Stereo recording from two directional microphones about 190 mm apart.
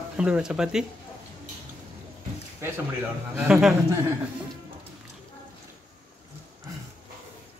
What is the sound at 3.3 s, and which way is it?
Speech, 5° right (ahead or behind).